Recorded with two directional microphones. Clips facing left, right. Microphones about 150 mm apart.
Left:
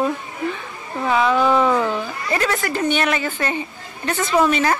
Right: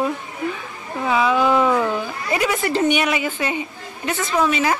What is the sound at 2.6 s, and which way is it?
Speech, 25° right (ahead or behind).